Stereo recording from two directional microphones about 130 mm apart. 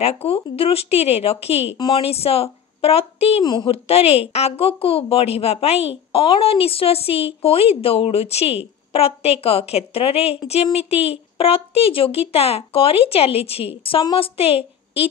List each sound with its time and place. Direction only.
0.0 s speech: 50° left (ahead or behind)
3.4 s a woman's voice: 40° left (ahead or behind)